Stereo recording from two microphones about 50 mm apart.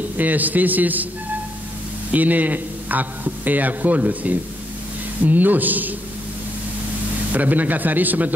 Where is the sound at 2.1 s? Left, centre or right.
Right.